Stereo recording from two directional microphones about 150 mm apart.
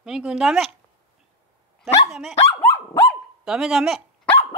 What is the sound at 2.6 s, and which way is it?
Dog, 15° left (ahead or behind).